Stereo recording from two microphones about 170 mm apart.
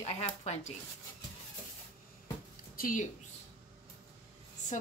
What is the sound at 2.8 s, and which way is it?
Speech, 55° left (ahead or behind).